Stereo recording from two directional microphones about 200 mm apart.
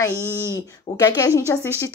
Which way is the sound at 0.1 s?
15° right (ahead or behind).